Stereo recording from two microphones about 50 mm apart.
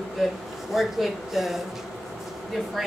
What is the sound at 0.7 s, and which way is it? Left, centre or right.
A woman's voice, centre.